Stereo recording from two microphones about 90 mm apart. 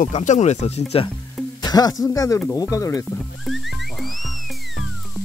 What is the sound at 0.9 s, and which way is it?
Speech, 90° left.